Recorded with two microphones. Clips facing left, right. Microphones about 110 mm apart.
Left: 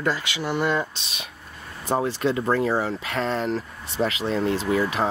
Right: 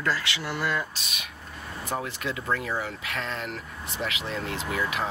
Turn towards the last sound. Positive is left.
turn(degrees=30)  # may be behind; listen again after turning